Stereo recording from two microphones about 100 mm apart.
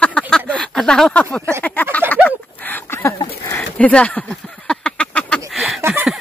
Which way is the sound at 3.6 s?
10° left (ahead or behind).